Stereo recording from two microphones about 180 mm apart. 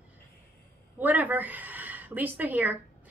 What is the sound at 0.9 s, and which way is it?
A woman's voice, 10° right (ahead or behind).